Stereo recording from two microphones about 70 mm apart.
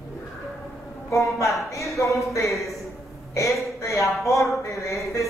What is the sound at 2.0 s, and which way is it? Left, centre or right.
A man's voice, left.